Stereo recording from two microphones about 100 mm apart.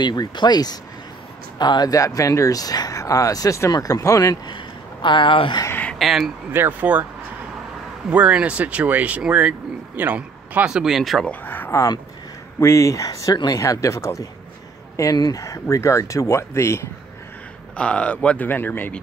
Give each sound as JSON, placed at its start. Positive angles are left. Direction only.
{"t": 0.0, "sound": "speech", "side_deg": 45}
{"t": 4.5, "sound": "speech", "side_deg": 55}
{"t": 5.7, "sound": "a sound", "side_deg": 15}
{"t": 5.9, "sound": "speech", "side_deg": 0}
{"t": 6.5, "sound": "speech", "side_deg": -20}
{"t": 8.1, "sound": "speech", "side_deg": -10}
{"t": 11.2, "sound": "speech", "side_deg": 20}
{"t": 17.7, "sound": "speech", "side_deg": 10}